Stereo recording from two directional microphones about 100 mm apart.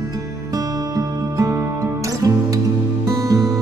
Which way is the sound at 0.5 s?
35° right (ahead or behind).